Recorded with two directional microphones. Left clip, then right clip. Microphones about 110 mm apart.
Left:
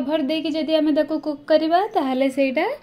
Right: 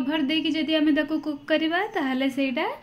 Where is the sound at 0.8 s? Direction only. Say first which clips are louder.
Left 3 dB; 30° right (ahead or behind).